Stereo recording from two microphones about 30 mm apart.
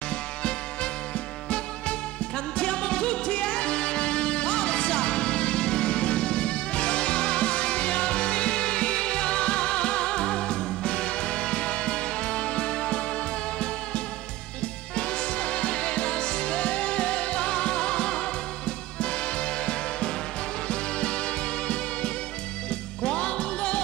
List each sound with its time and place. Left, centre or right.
1.5 s music: left
15.0 s music: left